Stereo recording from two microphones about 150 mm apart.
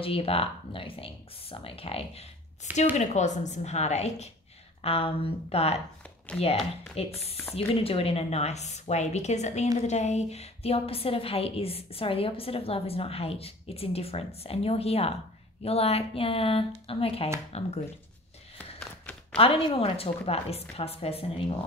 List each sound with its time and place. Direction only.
0.0 s a woman's voice: 40° left (ahead or behind)
7.0 s a woman's voice: 40° left (ahead or behind)
19.3 s a woman's voice: 40° left (ahead or behind)